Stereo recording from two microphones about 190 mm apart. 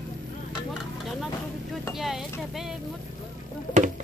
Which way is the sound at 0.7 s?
Centre (ahead or behind).